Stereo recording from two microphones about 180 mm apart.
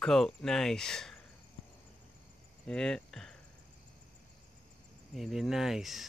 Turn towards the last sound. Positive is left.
turn(degrees=0)  # may be behind; listen again after turning